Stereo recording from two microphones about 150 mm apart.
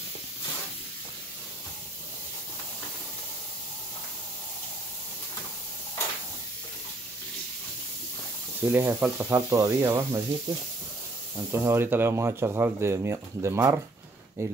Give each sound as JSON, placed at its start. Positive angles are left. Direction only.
{"t": 8.6, "sound": "speech", "side_deg": -15}
{"t": 11.3, "sound": "speech", "side_deg": -15}